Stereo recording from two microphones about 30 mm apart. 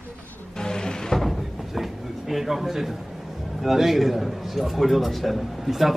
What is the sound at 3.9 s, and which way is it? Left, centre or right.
A man's voice, centre.